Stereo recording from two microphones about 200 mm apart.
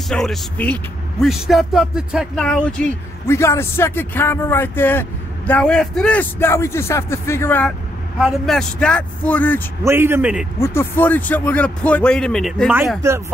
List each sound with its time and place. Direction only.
0.1 s a man's voice: 5° left (ahead or behind)
8.2 s speech: centre (ahead or behind)
9.8 s a man's voice: 10° right (ahead or behind)
10.6 s a man's voice: 10° left (ahead or behind)
13.0 s a man's voice: 15° right (ahead or behind)